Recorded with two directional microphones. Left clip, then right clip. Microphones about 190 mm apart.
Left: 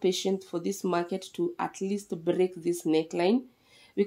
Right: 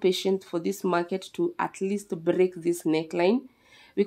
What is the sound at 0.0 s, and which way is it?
Speech, 20° right (ahead or behind).